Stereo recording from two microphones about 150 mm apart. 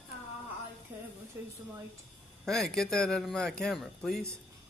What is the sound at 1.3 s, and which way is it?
Speech, 15° right (ahead or behind).